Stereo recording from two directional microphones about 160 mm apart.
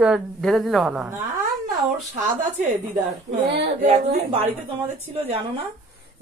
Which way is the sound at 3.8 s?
40° right (ahead or behind).